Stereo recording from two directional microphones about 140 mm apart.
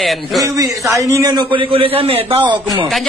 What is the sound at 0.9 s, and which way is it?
A man's voice, 20° right (ahead or behind).